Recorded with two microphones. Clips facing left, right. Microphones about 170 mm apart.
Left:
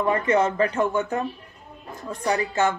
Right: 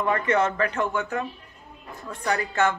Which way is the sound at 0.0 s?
25° left (ahead or behind).